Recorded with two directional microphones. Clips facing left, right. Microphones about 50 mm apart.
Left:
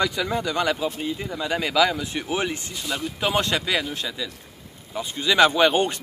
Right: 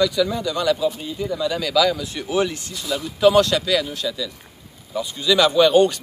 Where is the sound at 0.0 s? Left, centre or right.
Left.